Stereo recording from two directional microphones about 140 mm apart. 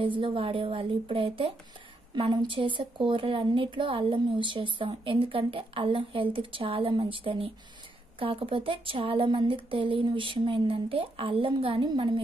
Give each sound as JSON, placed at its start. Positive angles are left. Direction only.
{"t": 0.0, "sound": "a woman's voice", "side_deg": -40}